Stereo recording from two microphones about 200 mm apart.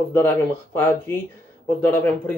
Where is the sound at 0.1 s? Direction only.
10° left (ahead or behind).